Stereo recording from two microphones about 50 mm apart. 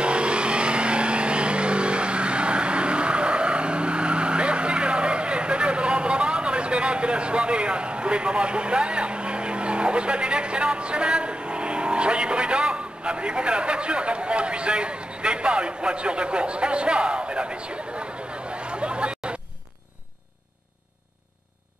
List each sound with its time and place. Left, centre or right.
0.0 s vehicle: right